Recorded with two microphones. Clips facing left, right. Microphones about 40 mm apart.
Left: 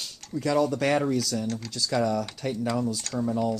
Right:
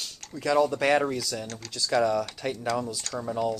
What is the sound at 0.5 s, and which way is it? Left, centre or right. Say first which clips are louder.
Speech: right 2 dB; centre.